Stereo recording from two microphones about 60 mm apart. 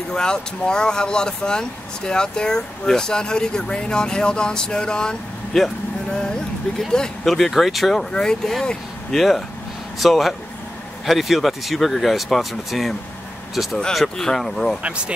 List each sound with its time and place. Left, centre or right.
0.1 s speech: centre
6.8 s speech: centre
14.8 s speech: centre